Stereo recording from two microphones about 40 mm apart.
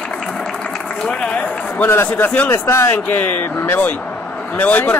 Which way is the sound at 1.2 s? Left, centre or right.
Left.